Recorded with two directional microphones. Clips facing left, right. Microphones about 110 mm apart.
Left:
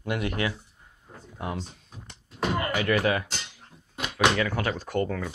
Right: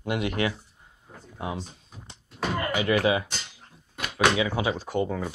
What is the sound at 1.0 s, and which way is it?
Speech, 5° right (ahead or behind).